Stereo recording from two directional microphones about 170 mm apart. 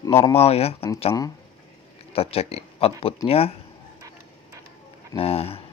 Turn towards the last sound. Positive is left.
turn(degrees=35)  # may be behind; listen again after turning